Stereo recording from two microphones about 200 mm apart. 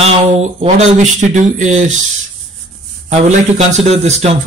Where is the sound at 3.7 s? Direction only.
35° right (ahead or behind).